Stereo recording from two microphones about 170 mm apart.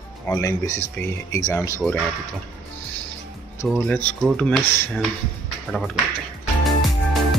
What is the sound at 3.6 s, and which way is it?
Speech, centre (ahead or behind).